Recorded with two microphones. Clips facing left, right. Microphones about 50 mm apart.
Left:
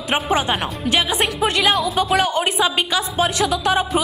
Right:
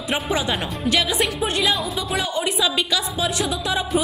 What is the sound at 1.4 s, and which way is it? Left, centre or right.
A woman's voice, left.